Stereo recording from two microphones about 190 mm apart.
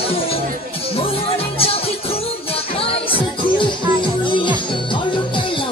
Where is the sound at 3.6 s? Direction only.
25° left (ahead or behind).